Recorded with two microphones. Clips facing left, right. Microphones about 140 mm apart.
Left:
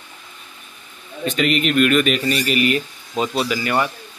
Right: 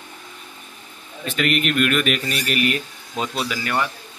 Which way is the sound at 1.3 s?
Centre (ahead or behind).